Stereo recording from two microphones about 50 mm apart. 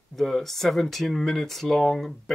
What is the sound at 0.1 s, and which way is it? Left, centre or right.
Speech, centre.